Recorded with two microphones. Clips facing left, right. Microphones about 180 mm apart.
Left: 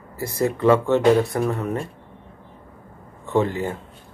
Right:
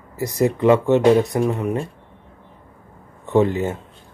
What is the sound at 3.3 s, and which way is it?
Speech, 20° right (ahead or behind).